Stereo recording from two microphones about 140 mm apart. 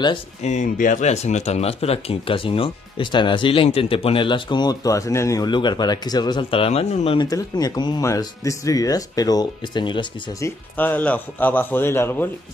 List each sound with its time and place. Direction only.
0.4 s speech: 60° left (ahead or behind)
7.2 s speech: 25° left (ahead or behind)
10.4 s speech: 15° left (ahead or behind)